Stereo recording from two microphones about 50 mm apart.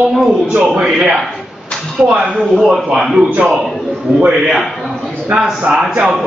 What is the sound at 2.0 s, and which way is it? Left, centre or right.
A man's voice, centre.